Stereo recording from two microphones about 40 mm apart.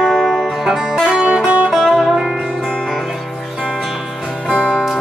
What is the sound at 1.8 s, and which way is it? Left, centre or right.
Music, centre.